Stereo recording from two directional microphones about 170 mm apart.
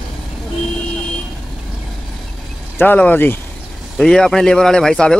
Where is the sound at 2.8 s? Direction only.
10° left (ahead or behind).